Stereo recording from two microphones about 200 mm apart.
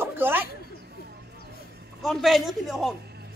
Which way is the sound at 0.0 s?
10° right (ahead or behind).